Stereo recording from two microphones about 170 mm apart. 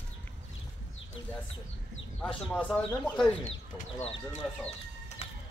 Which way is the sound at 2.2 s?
5° left (ahead or behind).